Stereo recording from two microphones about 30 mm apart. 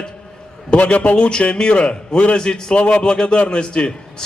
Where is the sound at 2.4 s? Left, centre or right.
Left.